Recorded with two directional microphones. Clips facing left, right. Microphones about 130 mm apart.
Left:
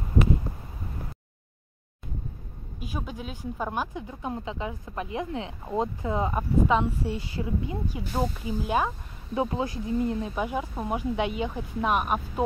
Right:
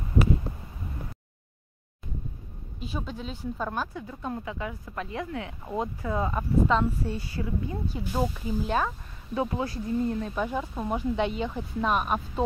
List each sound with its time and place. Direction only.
2.8 s speech: 10° left (ahead or behind)
8.0 s speech: 5° right (ahead or behind)
8.5 s speech: 15° left (ahead or behind)